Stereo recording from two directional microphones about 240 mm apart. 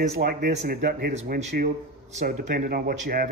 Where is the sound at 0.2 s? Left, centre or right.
Right.